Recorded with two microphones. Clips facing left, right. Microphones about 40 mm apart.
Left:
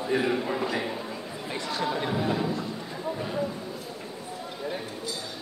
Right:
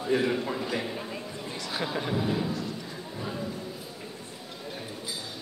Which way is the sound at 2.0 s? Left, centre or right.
Centre.